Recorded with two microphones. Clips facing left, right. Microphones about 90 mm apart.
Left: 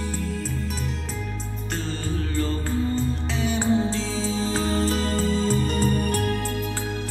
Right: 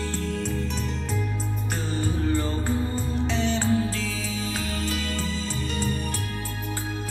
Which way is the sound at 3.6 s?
20° left (ahead or behind).